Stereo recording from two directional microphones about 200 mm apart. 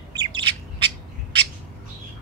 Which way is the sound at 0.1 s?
25° right (ahead or behind).